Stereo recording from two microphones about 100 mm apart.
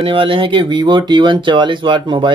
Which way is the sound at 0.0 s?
60° right (ahead or behind).